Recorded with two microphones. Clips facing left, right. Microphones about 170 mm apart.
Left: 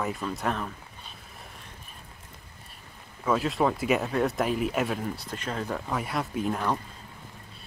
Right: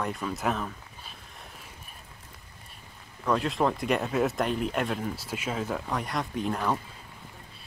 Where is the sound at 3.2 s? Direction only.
Centre (ahead or behind).